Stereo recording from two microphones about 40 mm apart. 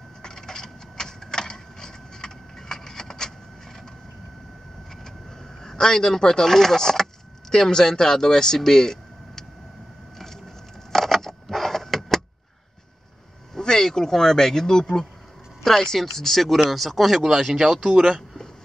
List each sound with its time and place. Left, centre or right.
0.2 s a sound: centre
5.6 s speech: centre
10.1 s a sound: centre
10.9 s vehicle: centre
13.6 s speech: centre
17.8 s speech: right